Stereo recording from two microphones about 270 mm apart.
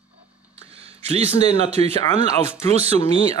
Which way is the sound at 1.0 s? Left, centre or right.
Right.